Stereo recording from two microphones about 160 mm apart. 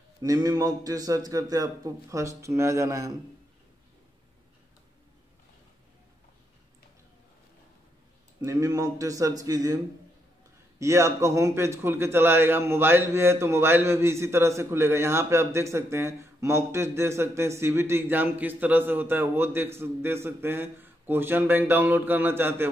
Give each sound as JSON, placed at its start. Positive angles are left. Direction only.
{"t": 0.2, "sound": "a man's voice", "side_deg": -25}
{"t": 8.4, "sound": "a man's voice", "side_deg": -20}
{"t": 10.8, "sound": "a man's voice", "side_deg": -20}